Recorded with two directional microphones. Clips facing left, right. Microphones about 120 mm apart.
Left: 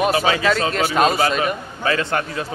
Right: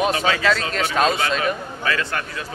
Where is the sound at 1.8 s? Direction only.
30° left (ahead or behind).